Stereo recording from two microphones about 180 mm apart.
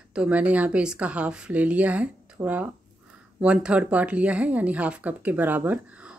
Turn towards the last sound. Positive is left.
turn(degrees=-10)  # may be behind; listen again after turning